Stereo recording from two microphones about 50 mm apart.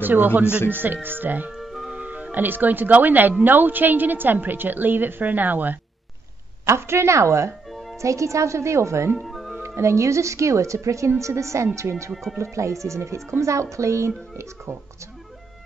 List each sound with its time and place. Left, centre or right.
0.0 s a woman's voice: right
0.7 s a woman's voice: right
1.5 s music: centre
2.0 s music: right
2.3 s a woman's voice: right
6.6 s a woman's voice: right
7.7 s music: centre
8.0 s speech: right
9.2 s music: centre
9.6 s speech: right
12.1 s speech: centre
12.4 s speech: right